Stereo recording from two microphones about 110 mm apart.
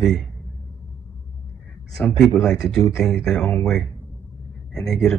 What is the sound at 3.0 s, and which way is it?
Speech, 5° left (ahead or behind).